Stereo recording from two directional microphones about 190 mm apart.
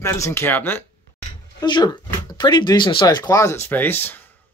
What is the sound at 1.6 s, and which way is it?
Speech, 25° left (ahead or behind).